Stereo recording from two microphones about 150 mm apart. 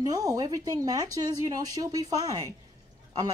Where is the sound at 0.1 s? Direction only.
25° right (ahead or behind).